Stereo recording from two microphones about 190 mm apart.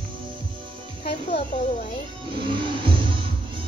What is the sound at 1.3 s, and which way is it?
Speech, 35° left (ahead or behind).